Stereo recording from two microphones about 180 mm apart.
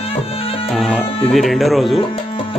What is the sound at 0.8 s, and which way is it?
Speech, centre (ahead or behind).